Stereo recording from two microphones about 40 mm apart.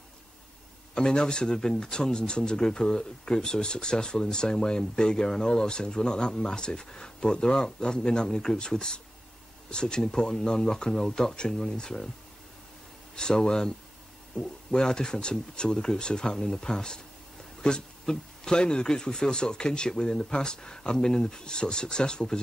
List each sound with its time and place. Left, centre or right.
0.9 s speech: centre
13.1 s speech: centre